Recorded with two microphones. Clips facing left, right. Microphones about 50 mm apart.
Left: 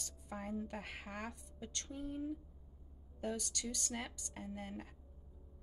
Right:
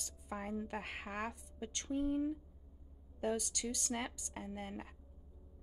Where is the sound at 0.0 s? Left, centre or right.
Right.